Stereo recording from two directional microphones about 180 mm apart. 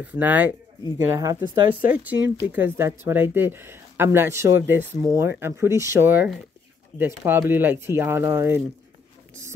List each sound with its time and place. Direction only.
0.0 s speech: 10° right (ahead or behind)